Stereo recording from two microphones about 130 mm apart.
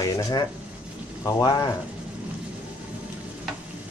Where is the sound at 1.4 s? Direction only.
25° left (ahead or behind).